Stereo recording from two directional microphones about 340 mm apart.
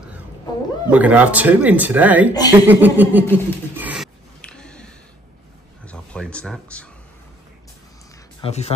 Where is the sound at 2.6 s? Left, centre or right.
Centre.